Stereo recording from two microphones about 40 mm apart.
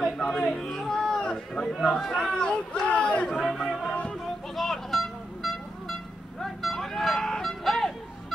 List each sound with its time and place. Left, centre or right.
0.2 s a sound: centre
1.8 s speech: centre
2.1 s speech: centre
2.9 s chatter: left
3.3 s chatter: centre
4.6 s vehicle: centre
7.2 s honk: centre